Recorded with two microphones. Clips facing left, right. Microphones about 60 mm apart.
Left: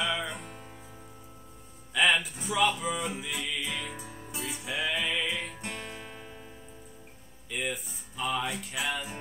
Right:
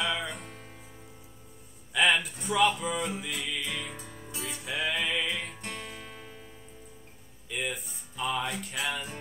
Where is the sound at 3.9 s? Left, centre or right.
Centre.